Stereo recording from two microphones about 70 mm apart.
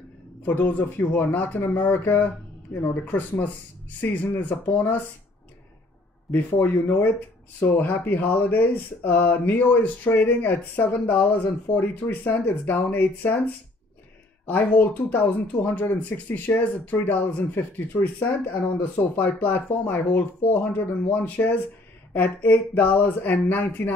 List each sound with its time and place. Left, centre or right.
0.5 s speech: left
6.3 s speech: left
14.4 s speech: left